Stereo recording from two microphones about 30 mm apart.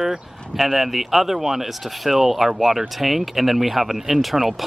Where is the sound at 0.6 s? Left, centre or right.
Centre.